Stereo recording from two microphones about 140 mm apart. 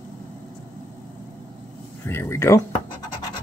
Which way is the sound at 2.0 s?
15° left (ahead or behind).